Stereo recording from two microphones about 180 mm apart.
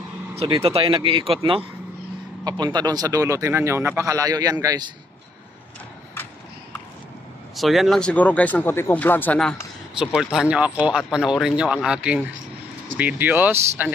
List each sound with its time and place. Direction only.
0.4 s a man's voice: 30° right (ahead or behind)
2.6 s a man's voice: 25° right (ahead or behind)
7.5 s speech: centre (ahead or behind)